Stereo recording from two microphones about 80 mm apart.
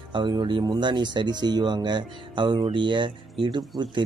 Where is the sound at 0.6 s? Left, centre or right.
Right.